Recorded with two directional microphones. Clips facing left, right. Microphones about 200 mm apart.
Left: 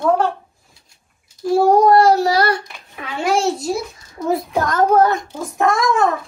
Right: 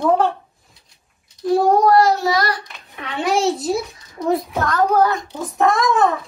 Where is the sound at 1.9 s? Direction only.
30° left (ahead or behind).